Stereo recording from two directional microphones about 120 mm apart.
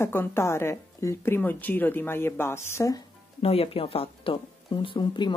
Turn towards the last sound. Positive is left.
turn(degrees=40)  # may be behind; listen again after turning